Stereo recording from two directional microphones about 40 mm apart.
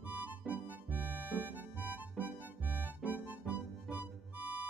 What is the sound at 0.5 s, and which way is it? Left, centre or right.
Music, right.